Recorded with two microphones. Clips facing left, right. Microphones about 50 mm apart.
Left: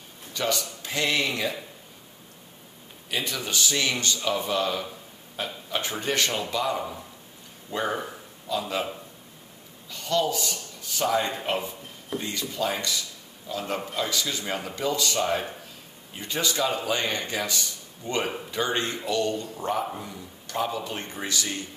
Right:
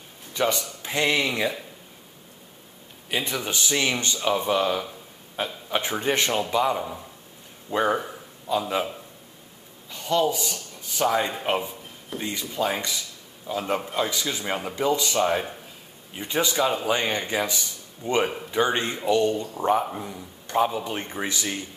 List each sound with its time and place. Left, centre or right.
0.3 s speech: right
3.1 s speech: right
9.8 s a man's voice: centre